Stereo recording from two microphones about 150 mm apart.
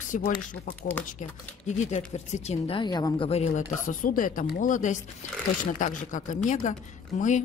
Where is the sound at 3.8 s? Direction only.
65° left (ahead or behind).